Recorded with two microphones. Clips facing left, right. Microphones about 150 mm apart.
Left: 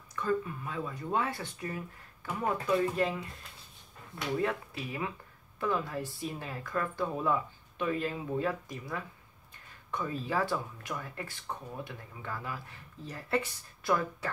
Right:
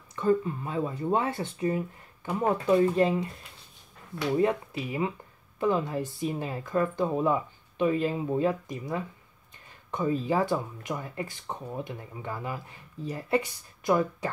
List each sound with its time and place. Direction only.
0.1 s speech: 25° right (ahead or behind)
4.4 s speech: 20° right (ahead or behind)